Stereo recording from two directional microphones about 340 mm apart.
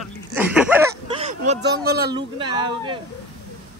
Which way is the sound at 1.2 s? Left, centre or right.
Centre.